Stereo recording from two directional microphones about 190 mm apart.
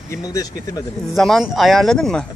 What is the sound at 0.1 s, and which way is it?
Speech, 20° left (ahead or behind).